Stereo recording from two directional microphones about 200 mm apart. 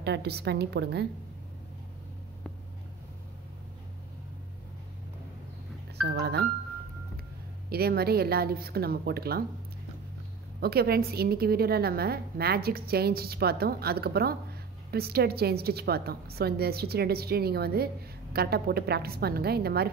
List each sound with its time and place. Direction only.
0.0 s a woman's voice: 55° right (ahead or behind)
6.0 s a woman's voice: 55° right (ahead or behind)
7.7 s a woman's voice: 50° right (ahead or behind)
10.6 s a woman's voice: 50° right (ahead or behind)